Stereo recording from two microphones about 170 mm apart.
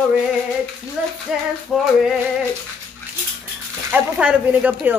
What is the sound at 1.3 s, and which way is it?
Speech, 5° right (ahead or behind).